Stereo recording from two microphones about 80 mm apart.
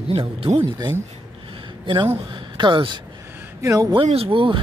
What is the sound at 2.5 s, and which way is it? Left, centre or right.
Speech, right.